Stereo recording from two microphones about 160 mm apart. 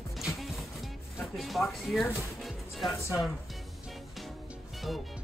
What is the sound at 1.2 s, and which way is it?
Speech, centre (ahead or behind).